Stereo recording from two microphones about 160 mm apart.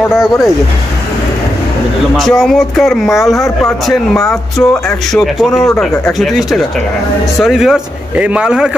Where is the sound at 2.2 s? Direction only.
Centre (ahead or behind).